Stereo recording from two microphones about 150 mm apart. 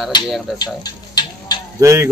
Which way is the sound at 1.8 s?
20° right (ahead or behind).